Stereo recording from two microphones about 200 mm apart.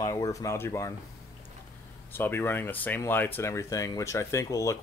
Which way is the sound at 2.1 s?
10° left (ahead or behind).